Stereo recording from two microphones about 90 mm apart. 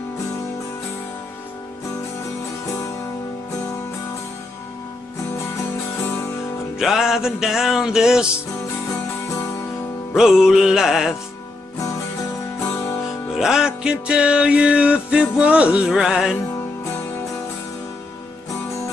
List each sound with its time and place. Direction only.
6.8 s music: 5° right (ahead or behind)
10.1 s music: 5° right (ahead or behind)
12.5 s music: 30° left (ahead or behind)
13.4 s music: 5° right (ahead or behind)